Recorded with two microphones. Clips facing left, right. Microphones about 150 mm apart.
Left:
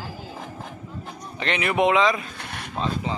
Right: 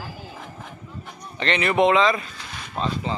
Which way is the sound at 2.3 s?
60° left (ahead or behind).